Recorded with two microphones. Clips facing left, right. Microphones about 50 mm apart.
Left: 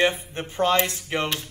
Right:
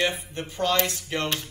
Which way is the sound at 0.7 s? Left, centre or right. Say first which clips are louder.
Left 2 dB; centre.